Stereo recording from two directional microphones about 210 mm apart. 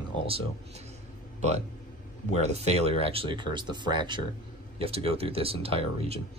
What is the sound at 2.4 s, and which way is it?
Speech, 30° right (ahead or behind).